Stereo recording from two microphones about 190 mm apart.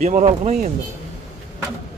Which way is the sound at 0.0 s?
40° right (ahead or behind).